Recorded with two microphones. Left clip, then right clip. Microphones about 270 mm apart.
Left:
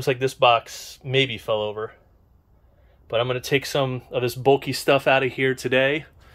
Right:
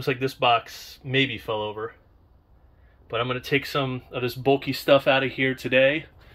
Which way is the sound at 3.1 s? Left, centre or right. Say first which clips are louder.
Left 3 dB; centre.